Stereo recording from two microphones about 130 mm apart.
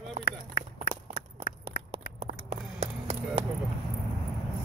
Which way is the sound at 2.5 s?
55° right (ahead or behind).